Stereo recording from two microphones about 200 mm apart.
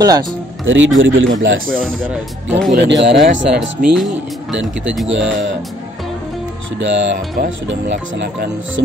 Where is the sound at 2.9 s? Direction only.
60° right (ahead or behind).